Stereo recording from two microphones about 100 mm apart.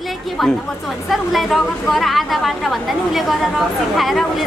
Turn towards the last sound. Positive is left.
turn(degrees=0)  # may be behind; listen again after turning